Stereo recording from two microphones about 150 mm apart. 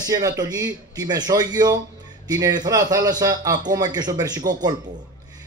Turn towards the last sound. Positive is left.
turn(degrees=-25)  # may be behind; listen again after turning